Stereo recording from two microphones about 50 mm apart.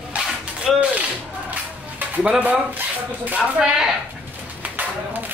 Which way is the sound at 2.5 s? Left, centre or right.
Right.